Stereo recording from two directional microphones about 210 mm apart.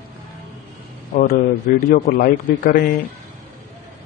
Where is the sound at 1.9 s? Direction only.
40° left (ahead or behind).